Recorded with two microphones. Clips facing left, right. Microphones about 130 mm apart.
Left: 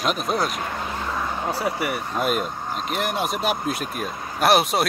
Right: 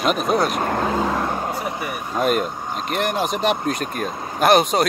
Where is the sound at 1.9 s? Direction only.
10° right (ahead or behind).